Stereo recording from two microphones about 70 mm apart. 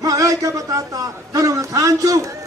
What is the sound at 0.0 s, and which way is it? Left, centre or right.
A man's voice, right.